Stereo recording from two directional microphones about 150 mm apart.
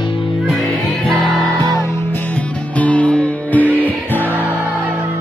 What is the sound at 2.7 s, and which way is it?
Music, 10° left (ahead or behind).